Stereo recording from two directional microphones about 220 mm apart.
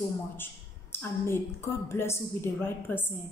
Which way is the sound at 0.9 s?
10° left (ahead or behind).